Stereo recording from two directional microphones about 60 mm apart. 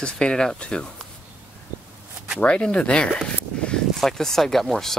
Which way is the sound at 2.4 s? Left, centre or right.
Centre.